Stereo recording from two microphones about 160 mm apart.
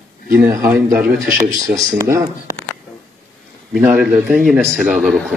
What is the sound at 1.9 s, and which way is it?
Speech, 15° right (ahead or behind).